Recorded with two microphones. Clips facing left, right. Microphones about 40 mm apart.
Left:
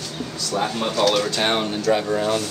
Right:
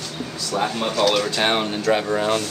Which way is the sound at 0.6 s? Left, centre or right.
Centre.